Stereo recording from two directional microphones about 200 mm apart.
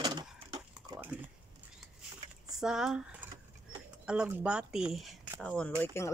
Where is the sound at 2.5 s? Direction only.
5° right (ahead or behind).